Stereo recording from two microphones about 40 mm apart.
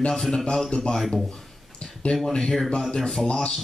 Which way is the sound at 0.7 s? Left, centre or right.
Left.